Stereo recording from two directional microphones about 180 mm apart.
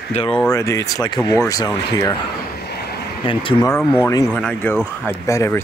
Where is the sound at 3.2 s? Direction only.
30° left (ahead or behind).